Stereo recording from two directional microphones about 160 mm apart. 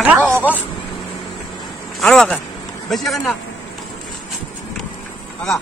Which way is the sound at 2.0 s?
5° left (ahead or behind).